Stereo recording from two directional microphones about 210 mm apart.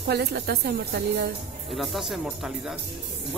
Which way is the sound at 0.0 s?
50° right (ahead or behind).